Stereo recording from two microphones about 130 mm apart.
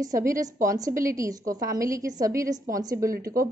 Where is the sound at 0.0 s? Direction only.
25° right (ahead or behind).